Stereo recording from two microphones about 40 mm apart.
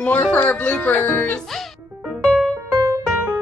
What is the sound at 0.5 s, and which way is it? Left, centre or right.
Speech, left.